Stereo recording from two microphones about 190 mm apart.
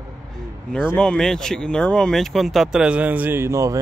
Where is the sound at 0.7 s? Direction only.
5° left (ahead or behind).